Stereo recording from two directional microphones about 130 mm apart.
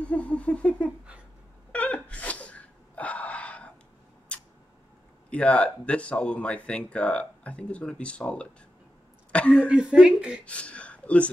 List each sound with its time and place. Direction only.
0.0 s a sound: 10° left (ahead or behind)
1.7 s gasp: 10° left (ahead or behind)
4.3 s a sound: 10° left (ahead or behind)
5.3 s speech: 10° left (ahead or behind)
9.7 s speech: 10° right (ahead or behind)
10.4 s speech: 10° left (ahead or behind)